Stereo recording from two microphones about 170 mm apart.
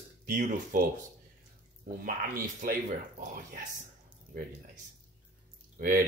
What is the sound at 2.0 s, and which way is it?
Speech, 55° right (ahead or behind).